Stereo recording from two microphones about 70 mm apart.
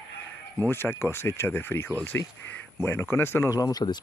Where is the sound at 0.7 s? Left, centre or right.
Left.